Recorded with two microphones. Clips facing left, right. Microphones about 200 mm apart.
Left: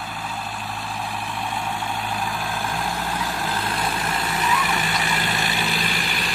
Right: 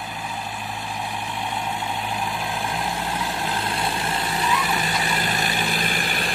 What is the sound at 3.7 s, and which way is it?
Vehicle, 30° right (ahead or behind).